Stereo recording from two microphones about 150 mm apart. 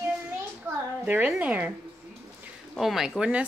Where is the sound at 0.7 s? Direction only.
15° right (ahead or behind).